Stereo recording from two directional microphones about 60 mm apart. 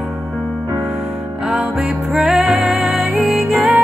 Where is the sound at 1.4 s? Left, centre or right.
Centre.